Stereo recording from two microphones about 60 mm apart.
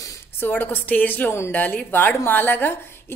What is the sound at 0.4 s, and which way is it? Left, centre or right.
A woman's voice, left.